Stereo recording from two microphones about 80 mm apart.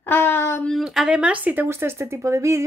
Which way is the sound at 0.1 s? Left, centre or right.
Left.